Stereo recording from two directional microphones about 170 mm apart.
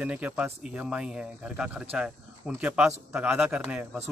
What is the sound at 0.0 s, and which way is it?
Speech, 10° right (ahead or behind).